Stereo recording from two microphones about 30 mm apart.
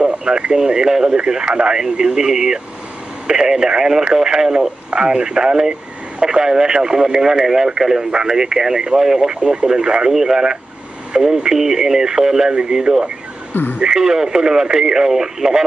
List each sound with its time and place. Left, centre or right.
0.2 s speech: right
12.9 s speech: right
13.9 s speech: centre